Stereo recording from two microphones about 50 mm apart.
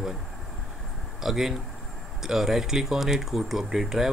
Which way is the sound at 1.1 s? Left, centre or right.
Centre.